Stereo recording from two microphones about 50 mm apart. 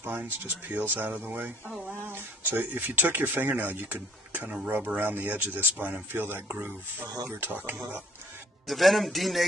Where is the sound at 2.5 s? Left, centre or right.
Right.